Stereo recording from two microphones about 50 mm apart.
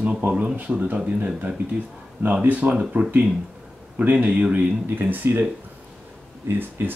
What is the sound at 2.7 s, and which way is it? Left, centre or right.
Speech, right.